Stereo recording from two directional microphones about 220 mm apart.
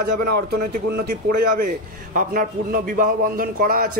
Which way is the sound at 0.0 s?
45° right (ahead or behind).